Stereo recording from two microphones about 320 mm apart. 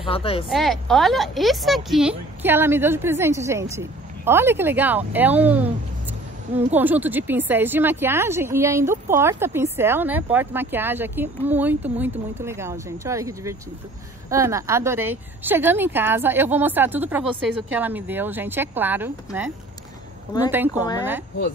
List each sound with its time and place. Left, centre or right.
0.0 s speech: centre
0.5 s a woman's voice: centre
20.7 s speech: centre